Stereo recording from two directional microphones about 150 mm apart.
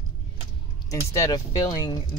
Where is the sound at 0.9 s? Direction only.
20° left (ahead or behind).